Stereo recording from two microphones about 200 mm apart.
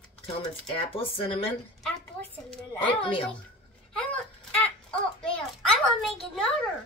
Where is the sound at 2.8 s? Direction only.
25° left (ahead or behind).